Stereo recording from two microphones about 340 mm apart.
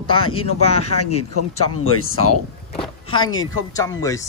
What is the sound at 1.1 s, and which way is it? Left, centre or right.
Speech, left.